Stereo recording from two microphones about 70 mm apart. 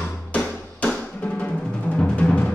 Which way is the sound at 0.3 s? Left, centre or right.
Centre.